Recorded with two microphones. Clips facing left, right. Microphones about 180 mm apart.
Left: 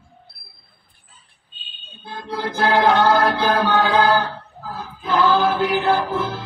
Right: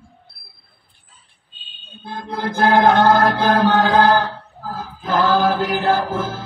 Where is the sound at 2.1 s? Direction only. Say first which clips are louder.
Right 1 dB; 50° right (ahead or behind).